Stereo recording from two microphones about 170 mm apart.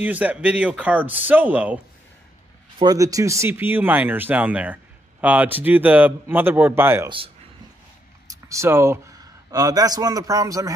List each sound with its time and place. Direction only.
0.0 s speech: 10° right (ahead or behind)
2.8 s speech: 20° right (ahead or behind)
8.3 s speech: 20° right (ahead or behind)